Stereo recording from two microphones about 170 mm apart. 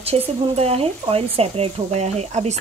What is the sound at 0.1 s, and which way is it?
Speech, 35° right (ahead or behind).